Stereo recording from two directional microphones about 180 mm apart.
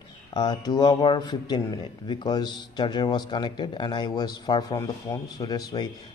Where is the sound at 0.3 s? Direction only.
20° left (ahead or behind).